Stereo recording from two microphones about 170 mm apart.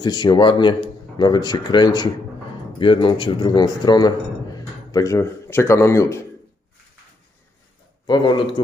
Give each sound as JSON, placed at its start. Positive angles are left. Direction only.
{"t": 0.0, "sound": "a man's voice", "side_deg": 25}
{"t": 8.1, "sound": "speech", "side_deg": 25}